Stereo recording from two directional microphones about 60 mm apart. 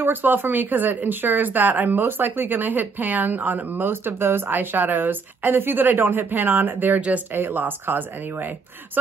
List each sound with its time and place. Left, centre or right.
0.0 s speech: right